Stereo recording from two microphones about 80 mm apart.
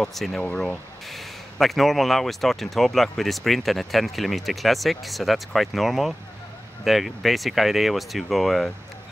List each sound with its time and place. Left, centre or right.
0.0 s speech: centre
0.4 s speech: left
1.0 s speech: centre